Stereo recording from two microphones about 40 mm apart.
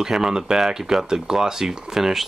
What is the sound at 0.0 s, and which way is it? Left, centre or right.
Speech, centre.